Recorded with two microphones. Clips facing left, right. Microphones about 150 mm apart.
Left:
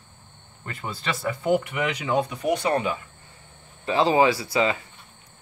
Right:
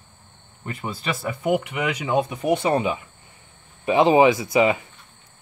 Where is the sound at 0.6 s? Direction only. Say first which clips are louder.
Right 3 dB; 10° right (ahead or behind).